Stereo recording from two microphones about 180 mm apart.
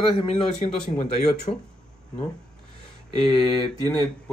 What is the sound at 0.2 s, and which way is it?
Speech, 35° left (ahead or behind).